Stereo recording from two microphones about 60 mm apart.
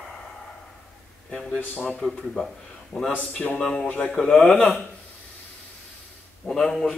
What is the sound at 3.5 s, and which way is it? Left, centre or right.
Speech, centre.